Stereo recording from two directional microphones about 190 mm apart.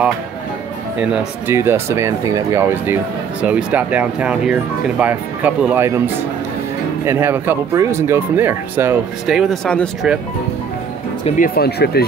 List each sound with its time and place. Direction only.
0.9 s speech: 5° right (ahead or behind)
7.1 s speech: 10° right (ahead or behind); by 9.8 s 5° left (ahead or behind)
11.2 s speech: 45° left (ahead or behind)